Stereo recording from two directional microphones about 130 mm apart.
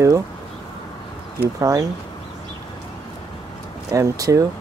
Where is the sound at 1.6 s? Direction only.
25° right (ahead or behind).